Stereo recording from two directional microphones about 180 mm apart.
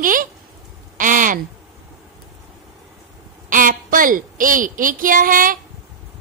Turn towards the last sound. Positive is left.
turn(degrees=-50)  # may be behind; listen again after turning